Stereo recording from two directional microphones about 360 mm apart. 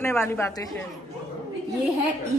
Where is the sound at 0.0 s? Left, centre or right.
Centre.